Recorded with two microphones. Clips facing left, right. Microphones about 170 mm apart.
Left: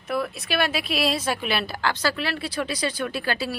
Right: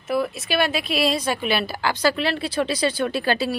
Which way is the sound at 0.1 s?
Centre (ahead or behind).